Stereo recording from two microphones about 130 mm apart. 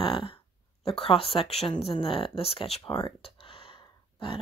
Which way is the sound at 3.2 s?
40° left (ahead or behind).